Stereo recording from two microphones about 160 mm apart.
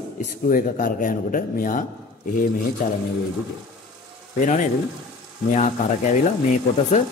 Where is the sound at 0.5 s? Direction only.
60° left (ahead or behind).